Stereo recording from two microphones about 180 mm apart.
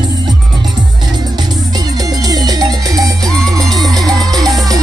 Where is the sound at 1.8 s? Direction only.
20° right (ahead or behind).